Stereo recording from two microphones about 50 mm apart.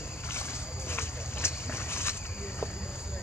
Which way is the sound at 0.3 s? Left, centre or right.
Left.